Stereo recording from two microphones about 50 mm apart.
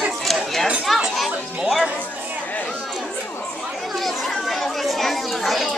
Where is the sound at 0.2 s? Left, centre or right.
Centre.